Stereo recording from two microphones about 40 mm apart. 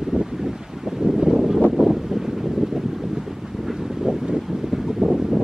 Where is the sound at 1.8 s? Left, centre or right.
Right.